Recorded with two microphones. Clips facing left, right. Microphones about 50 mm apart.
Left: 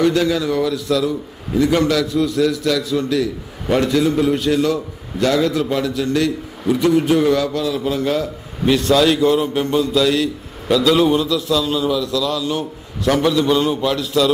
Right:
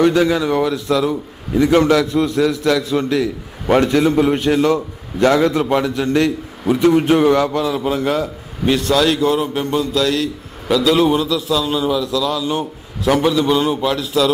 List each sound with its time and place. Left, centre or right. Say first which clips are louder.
0.0 s a man's voice: right 2 dB; right
8.1 s a man's voice: right 1 dB; centre